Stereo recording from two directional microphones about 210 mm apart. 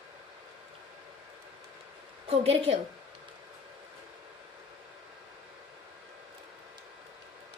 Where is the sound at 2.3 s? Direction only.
25° right (ahead or behind).